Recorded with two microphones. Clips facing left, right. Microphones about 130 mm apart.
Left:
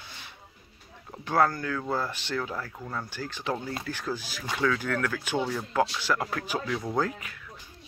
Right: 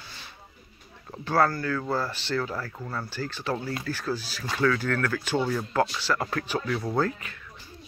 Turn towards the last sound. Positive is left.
turn(degrees=10)  # may be behind; listen again after turning